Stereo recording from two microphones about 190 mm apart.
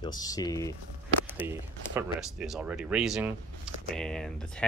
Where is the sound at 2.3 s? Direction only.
Centre (ahead or behind).